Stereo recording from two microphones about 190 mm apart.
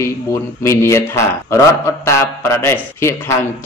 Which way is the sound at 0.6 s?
15° left (ahead or behind).